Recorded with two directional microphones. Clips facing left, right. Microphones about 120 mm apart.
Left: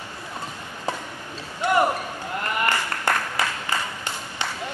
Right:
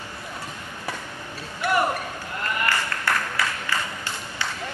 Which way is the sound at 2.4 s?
20° left (ahead or behind).